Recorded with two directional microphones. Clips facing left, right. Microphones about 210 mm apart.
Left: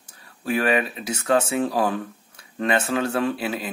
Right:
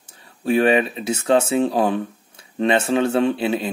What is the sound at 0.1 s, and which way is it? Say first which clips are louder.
Speech: right 6 dB; 25° right (ahead or behind).